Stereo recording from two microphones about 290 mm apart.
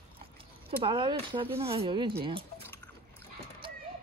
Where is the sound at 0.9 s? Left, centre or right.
Centre.